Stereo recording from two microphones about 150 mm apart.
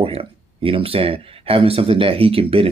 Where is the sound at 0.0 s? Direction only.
40° right (ahead or behind).